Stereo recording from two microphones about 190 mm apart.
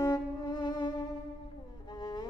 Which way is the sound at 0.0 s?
20° left (ahead or behind).